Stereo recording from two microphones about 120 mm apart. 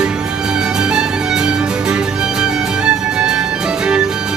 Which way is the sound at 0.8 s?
5° right (ahead or behind).